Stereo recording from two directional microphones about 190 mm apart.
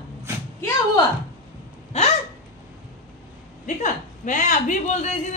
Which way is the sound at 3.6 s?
40° left (ahead or behind).